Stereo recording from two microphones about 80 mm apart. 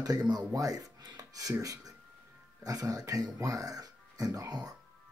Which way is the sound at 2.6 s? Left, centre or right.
Right.